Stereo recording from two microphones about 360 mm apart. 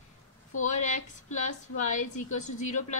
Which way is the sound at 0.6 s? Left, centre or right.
Centre.